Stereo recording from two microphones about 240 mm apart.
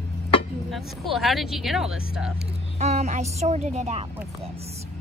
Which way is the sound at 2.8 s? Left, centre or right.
Right.